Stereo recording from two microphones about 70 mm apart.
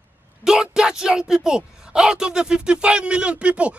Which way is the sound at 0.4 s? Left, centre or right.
Centre.